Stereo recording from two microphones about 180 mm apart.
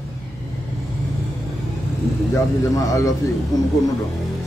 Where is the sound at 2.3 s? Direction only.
20° left (ahead or behind).